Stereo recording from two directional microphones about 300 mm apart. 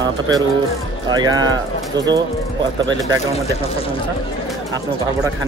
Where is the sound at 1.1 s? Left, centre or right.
Centre.